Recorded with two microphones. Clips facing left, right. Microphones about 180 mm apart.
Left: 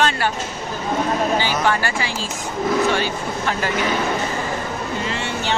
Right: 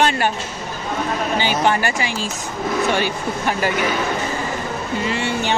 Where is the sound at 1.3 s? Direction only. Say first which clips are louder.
Right 1 dB; 20° right (ahead or behind).